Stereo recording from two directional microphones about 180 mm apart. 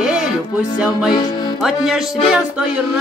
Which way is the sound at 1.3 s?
25° left (ahead or behind).